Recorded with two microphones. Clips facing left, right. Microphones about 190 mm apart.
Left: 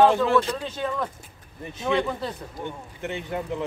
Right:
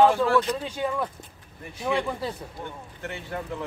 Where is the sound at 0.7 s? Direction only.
10° right (ahead or behind).